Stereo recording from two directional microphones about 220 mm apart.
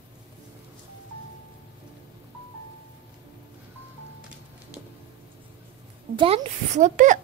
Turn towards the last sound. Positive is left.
turn(degrees=-35)  # may be behind; listen again after turning